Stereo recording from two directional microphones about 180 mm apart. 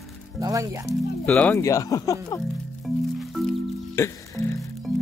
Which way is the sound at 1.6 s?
20° left (ahead or behind).